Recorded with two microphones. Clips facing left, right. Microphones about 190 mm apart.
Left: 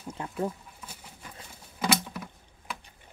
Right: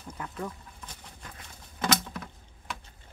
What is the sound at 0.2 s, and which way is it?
Speech, 25° left (ahead or behind).